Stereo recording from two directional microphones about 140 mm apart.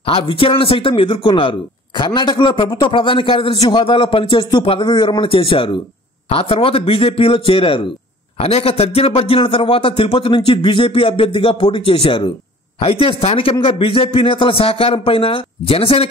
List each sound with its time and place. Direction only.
0.0 s speech: 40° left (ahead or behind)